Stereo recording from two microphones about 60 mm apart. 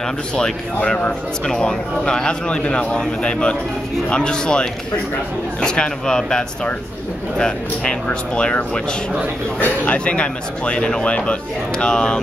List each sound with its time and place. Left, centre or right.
0.4 s speech: centre
9.8 s speech: centre